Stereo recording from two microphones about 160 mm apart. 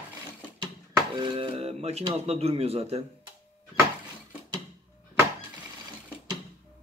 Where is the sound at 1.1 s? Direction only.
30° right (ahead or behind).